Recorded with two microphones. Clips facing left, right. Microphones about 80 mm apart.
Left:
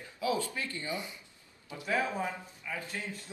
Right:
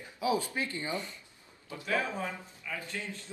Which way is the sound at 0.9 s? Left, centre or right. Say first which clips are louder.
Right 1 dB; centre.